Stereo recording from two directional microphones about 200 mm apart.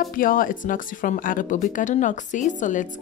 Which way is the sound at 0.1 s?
45° left (ahead or behind).